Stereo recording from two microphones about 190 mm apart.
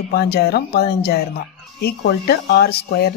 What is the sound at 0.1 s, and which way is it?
Speech, 55° left (ahead or behind).